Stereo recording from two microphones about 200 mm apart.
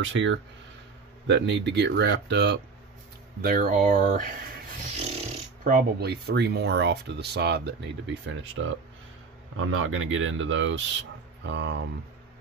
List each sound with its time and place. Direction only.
0.0 s speech: 70° right (ahead or behind)
3.4 s speech: 45° right (ahead or behind); by 8.7 s 75° right (ahead or behind)
9.7 s speech: 90° right; by 11.8 s 60° right (ahead or behind)